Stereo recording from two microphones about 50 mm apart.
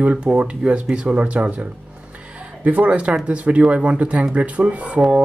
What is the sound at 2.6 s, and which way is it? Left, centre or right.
Speech, right.